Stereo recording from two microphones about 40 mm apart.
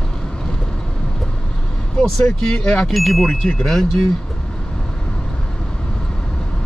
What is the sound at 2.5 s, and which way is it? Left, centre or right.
Speech, left.